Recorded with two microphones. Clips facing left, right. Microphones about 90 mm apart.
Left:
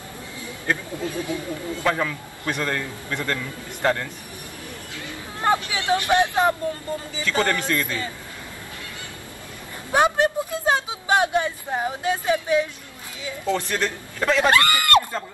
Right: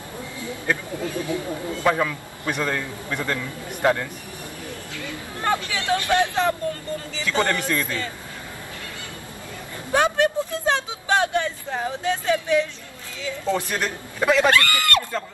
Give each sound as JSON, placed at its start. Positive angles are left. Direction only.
{"t": 1.3, "sound": "speech", "side_deg": -20}
{"t": 1.9, "sound": "a man's voice", "side_deg": -5}
{"t": 4.9, "sound": "speech", "side_deg": 20}
{"t": 7.4, "sound": "a man's voice", "side_deg": -15}
{"t": 9.9, "sound": "speech", "side_deg": 20}
{"t": 13.5, "sound": "a man's voice", "side_deg": -15}
{"t": 14.5, "sound": "speech", "side_deg": 20}